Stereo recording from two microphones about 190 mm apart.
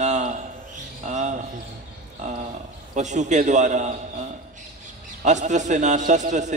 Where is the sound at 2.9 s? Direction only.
40° right (ahead or behind).